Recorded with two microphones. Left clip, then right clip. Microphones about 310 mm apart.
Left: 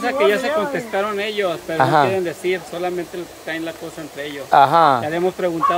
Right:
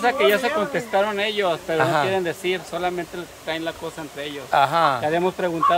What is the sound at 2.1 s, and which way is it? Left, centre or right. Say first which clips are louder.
Speech: left 2 dB; centre.